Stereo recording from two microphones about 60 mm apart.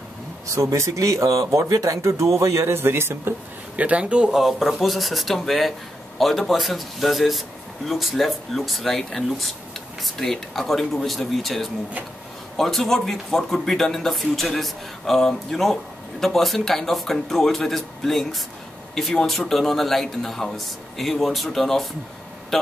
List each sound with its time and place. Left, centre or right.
0.6 s speech: right
3.7 s speech: right
4.3 s a man's voice: centre